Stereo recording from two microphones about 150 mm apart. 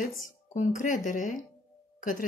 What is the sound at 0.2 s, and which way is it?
A woman's voice, 60° left (ahead or behind).